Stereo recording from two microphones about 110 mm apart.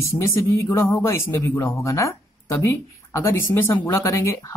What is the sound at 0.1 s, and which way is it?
Speech, 25° left (ahead or behind).